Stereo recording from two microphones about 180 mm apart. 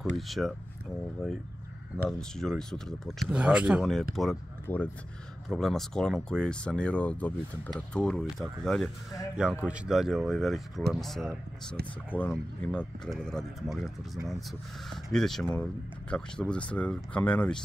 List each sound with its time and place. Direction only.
0.1 s speech: centre (ahead or behind)
4.7 s speech: 10° left (ahead or behind)
5.5 s speech: centre (ahead or behind)
11.8 s speech: 65° right (ahead or behind)
12.2 s speech: 10° left (ahead or behind)